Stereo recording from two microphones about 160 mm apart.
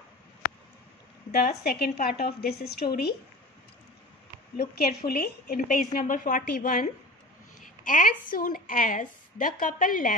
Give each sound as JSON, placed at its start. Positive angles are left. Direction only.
{"t": 1.6, "sound": "speech", "side_deg": 75}
{"t": 4.7, "sound": "a woman's voice", "side_deg": 75}